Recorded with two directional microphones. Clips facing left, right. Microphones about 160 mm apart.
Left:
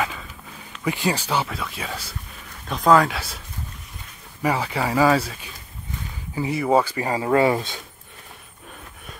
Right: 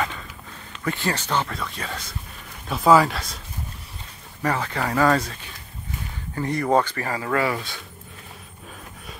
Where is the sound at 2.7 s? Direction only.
5° right (ahead or behind).